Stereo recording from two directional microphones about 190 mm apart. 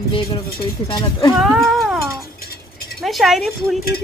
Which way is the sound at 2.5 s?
55° left (ahead or behind).